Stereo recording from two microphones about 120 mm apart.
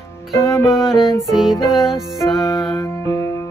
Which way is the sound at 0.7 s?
5° right (ahead or behind).